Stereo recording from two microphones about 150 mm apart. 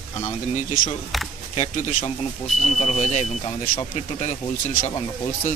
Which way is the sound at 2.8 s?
50° left (ahead or behind).